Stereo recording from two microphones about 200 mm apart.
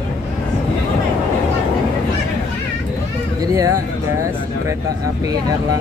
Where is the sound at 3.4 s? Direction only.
15° right (ahead or behind).